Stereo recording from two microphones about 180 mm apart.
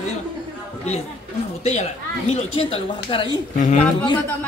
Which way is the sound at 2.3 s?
35° left (ahead or behind).